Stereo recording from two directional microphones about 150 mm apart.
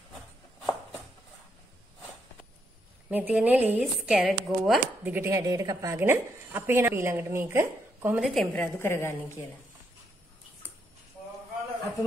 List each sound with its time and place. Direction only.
3.1 s a woman's voice: 10° right (ahead or behind)
5.1 s a woman's voice: 20° right (ahead or behind)
8.2 s speech: centre (ahead or behind)
8.7 s a woman's voice: 15° left (ahead or behind)